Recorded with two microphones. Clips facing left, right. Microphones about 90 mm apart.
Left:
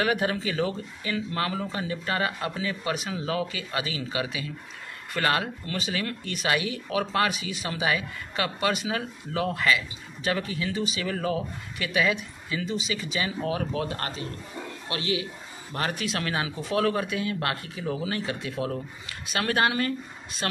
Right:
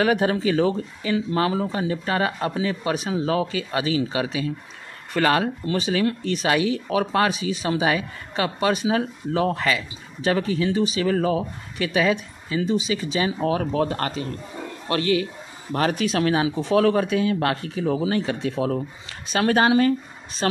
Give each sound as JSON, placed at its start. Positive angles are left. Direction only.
{"t": 0.0, "sound": "speech", "side_deg": -25}
{"t": 11.0, "sound": "speech", "side_deg": -40}
{"t": 15.7, "sound": "a man's voice", "side_deg": -60}
{"t": 16.1, "sound": "speech", "side_deg": -20}